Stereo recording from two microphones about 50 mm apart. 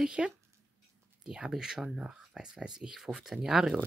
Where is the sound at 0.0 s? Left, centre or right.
Centre.